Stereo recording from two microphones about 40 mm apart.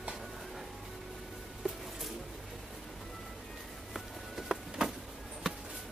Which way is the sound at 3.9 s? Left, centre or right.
Centre.